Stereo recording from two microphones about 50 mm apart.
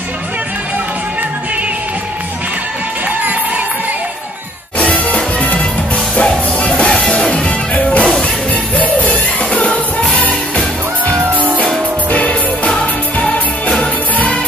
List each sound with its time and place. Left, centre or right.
4.8 s music: left
6.1 s music: centre
12.1 s music: left
12.7 s music: centre
13.7 s music: left